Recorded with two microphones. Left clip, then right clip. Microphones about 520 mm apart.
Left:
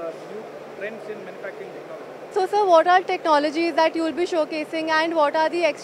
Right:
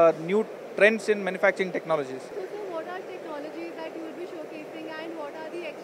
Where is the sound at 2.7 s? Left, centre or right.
Left.